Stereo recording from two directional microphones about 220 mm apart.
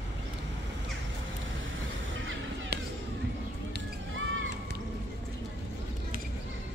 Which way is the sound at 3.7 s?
55° right (ahead or behind).